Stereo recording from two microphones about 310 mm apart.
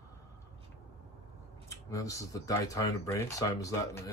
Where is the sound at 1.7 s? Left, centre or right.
Centre.